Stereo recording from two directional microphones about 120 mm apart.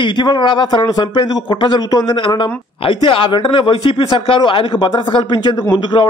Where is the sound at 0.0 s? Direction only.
40° left (ahead or behind).